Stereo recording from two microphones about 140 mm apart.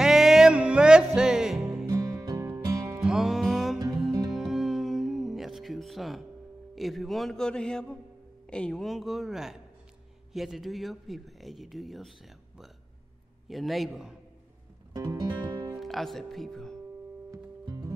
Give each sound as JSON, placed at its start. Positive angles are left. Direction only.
{"t": 0.0, "sound": "music", "side_deg": -5}
{"t": 1.9, "sound": "music", "side_deg": -25}
{"t": 3.0, "sound": "music", "side_deg": -5}
{"t": 6.7, "sound": "speech", "side_deg": 0}
{"t": 13.5, "sound": "speech", "side_deg": 0}
{"t": 14.9, "sound": "music", "side_deg": -25}
{"t": 15.8, "sound": "speech", "side_deg": 0}
{"t": 17.3, "sound": "music", "side_deg": -25}